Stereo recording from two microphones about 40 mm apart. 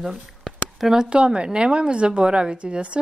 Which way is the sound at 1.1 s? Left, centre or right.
Right.